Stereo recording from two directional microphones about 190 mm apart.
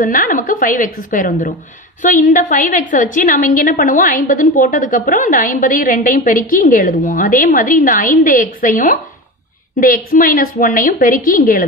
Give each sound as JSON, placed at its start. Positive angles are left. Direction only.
{"t": 0.0, "sound": "a woman's voice", "side_deg": 45}